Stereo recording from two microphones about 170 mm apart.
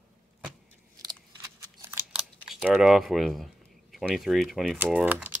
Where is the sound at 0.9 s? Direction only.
20° right (ahead or behind).